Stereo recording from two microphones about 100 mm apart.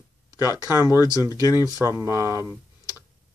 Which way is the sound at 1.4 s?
40° left (ahead or behind).